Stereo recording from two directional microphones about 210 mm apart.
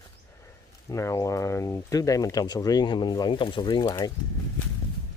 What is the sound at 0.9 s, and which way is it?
Speech, 15° left (ahead or behind).